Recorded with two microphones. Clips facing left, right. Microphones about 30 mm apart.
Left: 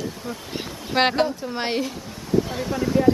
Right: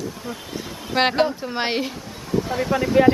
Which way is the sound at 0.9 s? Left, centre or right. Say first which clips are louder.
Right 1 dB; centre.